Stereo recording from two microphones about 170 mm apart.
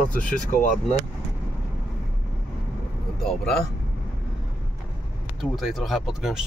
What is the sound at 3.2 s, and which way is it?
Speech, centre (ahead or behind).